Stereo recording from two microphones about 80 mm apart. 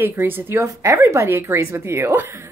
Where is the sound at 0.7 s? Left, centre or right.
Right.